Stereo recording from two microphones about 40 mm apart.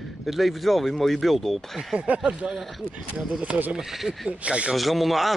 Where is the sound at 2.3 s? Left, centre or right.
Right.